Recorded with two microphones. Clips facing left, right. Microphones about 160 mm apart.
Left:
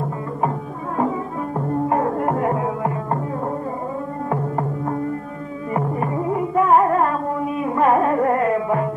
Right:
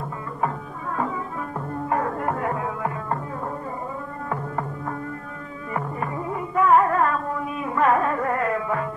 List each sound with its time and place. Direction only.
0.4 s music: 25° left (ahead or behind)
4.3 s music: 30° left (ahead or behind)